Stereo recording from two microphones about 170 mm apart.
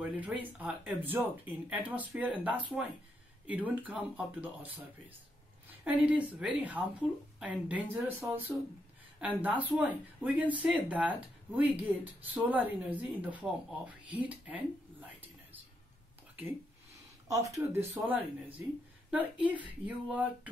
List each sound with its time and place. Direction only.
0.0 s speech: 10° right (ahead or behind)
5.9 s speech: 10° right (ahead or behind)
14.1 s a sound: 10° right (ahead or behind)
17.3 s speech: 20° right (ahead or behind)